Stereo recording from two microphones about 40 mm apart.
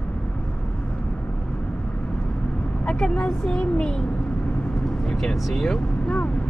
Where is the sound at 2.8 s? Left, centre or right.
Left.